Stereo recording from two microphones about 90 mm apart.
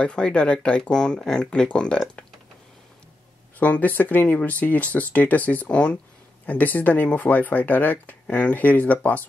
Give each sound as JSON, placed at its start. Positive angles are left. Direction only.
{"t": 0.0, "sound": "speech", "side_deg": 10}
{"t": 3.5, "sound": "speech", "side_deg": 15}